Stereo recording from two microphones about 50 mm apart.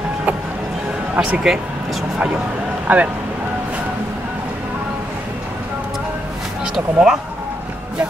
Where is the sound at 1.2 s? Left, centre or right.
Right.